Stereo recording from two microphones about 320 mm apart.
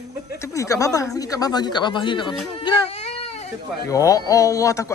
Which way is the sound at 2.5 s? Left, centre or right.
Centre.